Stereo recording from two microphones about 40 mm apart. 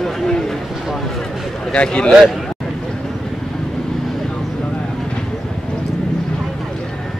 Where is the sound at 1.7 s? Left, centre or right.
Left.